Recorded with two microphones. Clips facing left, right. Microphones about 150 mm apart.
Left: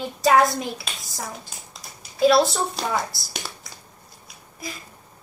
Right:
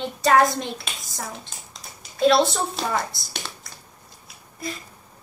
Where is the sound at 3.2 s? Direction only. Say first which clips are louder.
Even; centre (ahead or behind).